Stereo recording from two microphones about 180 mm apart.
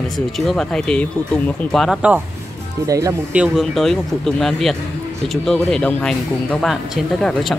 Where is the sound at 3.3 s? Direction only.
5° right (ahead or behind).